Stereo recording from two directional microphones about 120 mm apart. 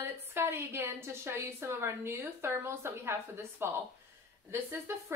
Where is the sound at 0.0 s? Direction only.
20° right (ahead or behind).